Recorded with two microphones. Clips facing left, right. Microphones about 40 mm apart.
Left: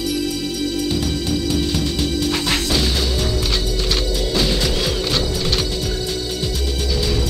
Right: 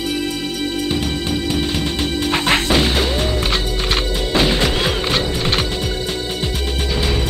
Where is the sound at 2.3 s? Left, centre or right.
Right.